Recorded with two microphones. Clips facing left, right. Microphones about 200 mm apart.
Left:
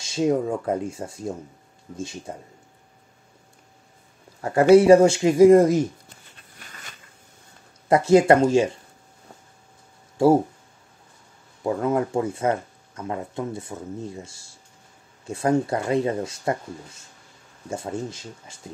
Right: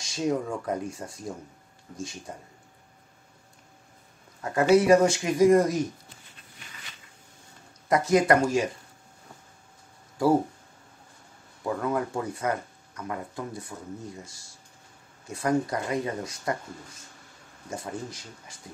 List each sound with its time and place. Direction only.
0.0 s speech: 25° left (ahead or behind)
4.4 s speech: 30° left (ahead or behind)
6.6 s a sound: 45° left (ahead or behind)
7.9 s speech: 30° left (ahead or behind)
10.1 s speech: 25° left (ahead or behind)
11.6 s speech: 25° left (ahead or behind)
17.6 s speech: 25° left (ahead or behind)